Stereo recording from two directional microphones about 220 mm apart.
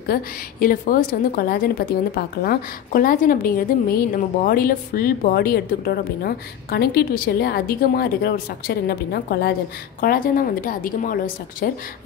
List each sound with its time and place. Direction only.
0.1 s a woman's voice: 40° left (ahead or behind)